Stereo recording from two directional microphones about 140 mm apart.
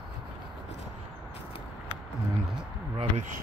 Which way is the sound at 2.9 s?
60° right (ahead or behind).